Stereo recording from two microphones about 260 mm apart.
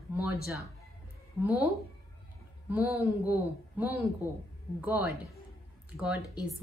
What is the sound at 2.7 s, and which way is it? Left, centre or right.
Speech, centre.